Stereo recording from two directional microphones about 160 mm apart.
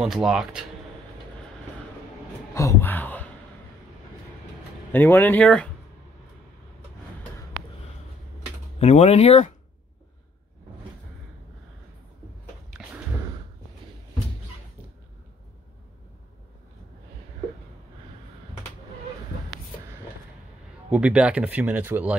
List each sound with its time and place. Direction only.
0.0 s speech: 5° right (ahead or behind)
2.5 s a sound: 15° left (ahead or behind)
4.9 s speech: 15° left (ahead or behind)
8.7 s speech: 45° left (ahead or behind)
20.9 s speech: 10° right (ahead or behind)